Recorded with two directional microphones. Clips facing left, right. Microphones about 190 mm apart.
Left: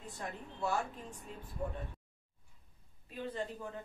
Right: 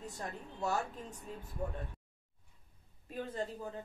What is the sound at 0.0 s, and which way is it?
A woman's voice, 40° right (ahead or behind).